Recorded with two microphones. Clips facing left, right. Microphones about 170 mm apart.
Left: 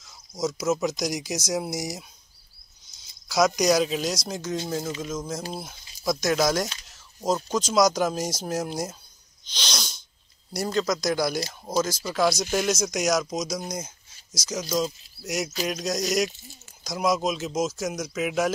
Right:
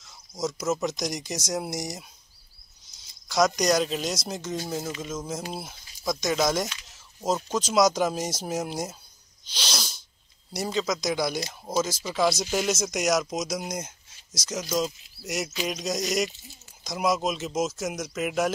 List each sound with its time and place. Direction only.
0.4 s speech: centre (ahead or behind)
9.5 s sneeze: 5° right (ahead or behind)
10.5 s speech: centre (ahead or behind)